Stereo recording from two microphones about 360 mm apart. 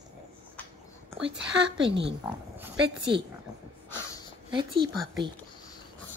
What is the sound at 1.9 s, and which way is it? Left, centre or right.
Speech, right.